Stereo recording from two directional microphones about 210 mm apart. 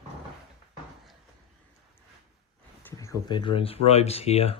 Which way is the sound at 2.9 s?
15° left (ahead or behind).